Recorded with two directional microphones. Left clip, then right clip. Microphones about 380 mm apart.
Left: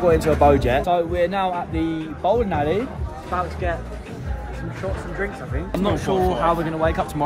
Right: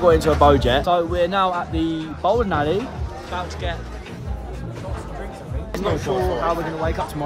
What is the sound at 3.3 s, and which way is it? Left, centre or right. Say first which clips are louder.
Speech: left 4 dB; centre.